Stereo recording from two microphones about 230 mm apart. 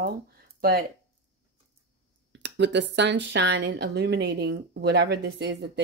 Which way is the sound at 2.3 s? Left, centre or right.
Right.